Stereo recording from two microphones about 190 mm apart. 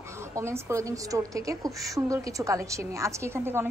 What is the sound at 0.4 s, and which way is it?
A woman's voice, 15° right (ahead or behind).